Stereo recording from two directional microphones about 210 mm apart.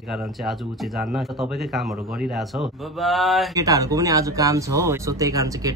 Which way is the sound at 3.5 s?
15° right (ahead or behind).